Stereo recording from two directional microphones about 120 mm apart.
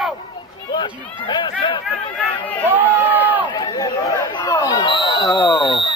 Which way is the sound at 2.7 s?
15° right (ahead or behind).